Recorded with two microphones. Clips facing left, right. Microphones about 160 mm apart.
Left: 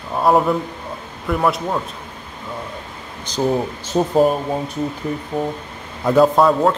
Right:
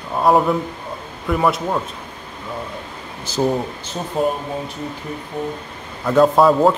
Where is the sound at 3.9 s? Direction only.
45° left (ahead or behind).